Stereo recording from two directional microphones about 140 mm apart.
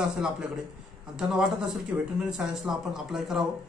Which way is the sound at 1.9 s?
20° right (ahead or behind).